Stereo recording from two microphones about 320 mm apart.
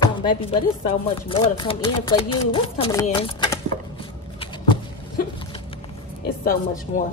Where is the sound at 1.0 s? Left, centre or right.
Centre.